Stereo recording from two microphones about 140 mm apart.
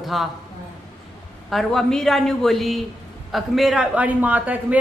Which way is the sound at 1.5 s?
Centre (ahead or behind).